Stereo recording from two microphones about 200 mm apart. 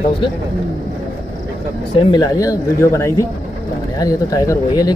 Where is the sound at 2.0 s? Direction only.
20° left (ahead or behind).